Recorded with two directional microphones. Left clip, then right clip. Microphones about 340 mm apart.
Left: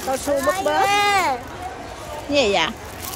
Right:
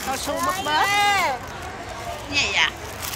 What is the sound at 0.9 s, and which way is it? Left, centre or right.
Speech, left.